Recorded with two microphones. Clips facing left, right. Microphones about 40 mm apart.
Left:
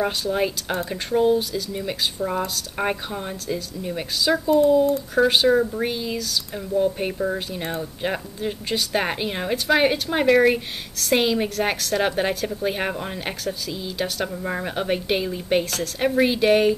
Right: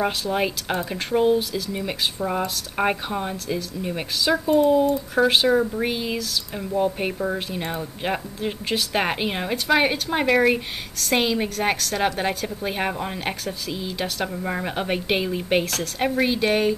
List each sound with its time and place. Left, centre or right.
0.3 s speech: centre
4.5 s speech: right
5.1 s speech: centre
5.9 s speech: centre
15.6 s speech: centre